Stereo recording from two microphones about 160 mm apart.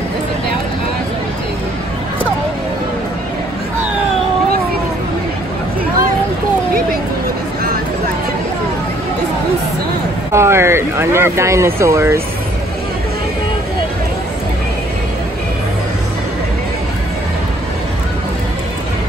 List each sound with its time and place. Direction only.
10.3 s speech: 15° right (ahead or behind)